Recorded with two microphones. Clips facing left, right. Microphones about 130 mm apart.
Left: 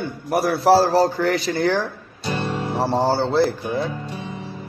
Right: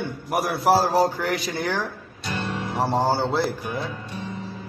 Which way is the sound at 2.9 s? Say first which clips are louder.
Left 2 dB; 15° right (ahead or behind).